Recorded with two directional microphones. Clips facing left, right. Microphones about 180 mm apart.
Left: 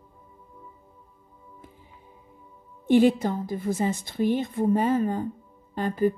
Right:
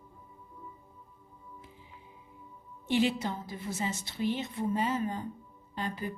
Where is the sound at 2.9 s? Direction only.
50° left (ahead or behind).